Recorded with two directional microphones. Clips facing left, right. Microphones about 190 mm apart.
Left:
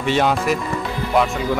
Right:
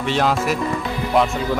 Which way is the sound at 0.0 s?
Centre (ahead or behind).